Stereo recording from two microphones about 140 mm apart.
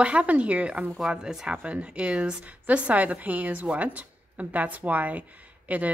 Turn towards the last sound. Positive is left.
turn(degrees=-10)  # may be behind; listen again after turning